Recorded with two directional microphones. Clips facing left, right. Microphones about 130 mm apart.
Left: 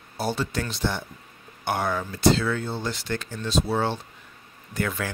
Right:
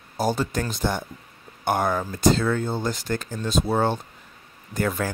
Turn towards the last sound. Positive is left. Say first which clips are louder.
# right 3 dB
turn(degrees=-40)  # may be behind; listen again after turning